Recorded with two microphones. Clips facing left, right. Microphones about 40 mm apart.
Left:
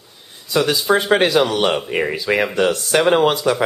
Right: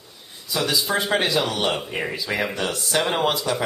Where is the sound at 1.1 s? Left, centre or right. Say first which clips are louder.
Left 7 dB; left.